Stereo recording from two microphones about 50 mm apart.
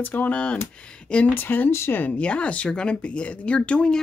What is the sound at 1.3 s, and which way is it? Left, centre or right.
Speech, left.